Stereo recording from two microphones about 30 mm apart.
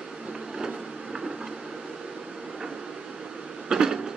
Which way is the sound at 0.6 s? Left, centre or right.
Centre.